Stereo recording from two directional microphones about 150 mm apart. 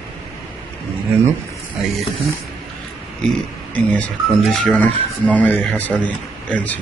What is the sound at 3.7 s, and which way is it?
A man's voice, 10° left (ahead or behind).